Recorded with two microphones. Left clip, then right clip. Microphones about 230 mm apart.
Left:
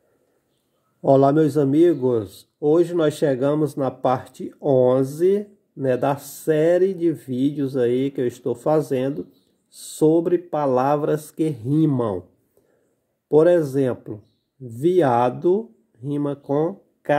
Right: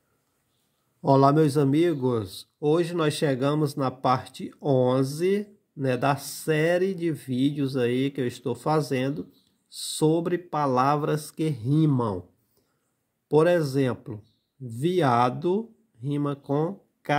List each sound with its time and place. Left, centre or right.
1.0 s a man's voice: right
13.3 s a man's voice: right